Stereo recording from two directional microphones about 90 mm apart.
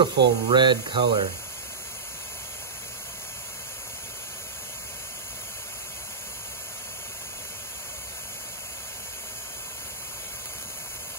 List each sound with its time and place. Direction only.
0.0 s speech: 60° right (ahead or behind)